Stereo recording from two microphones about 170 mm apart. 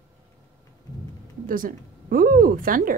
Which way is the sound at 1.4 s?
55° right (ahead or behind).